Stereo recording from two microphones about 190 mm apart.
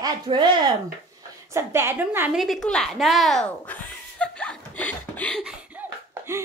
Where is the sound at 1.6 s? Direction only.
10° right (ahead or behind).